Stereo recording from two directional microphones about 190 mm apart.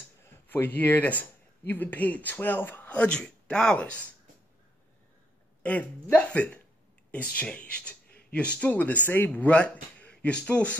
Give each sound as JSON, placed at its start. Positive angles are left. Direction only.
{"t": 0.5, "sound": "speech", "side_deg": 10}
{"t": 5.6, "sound": "speech", "side_deg": 10}